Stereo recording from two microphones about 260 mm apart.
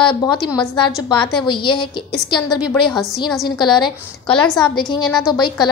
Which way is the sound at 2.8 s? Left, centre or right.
Centre.